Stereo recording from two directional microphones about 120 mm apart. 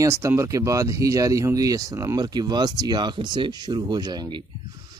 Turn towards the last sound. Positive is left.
turn(degrees=-35)  # may be behind; listen again after turning